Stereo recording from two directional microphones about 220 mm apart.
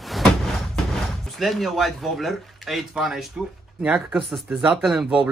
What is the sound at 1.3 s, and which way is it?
Speech, centre (ahead or behind).